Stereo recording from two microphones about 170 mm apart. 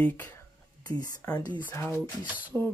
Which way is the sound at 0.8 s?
20° left (ahead or behind).